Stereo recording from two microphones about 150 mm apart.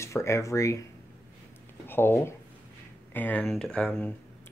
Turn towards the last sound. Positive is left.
turn(degrees=10)  # may be behind; listen again after turning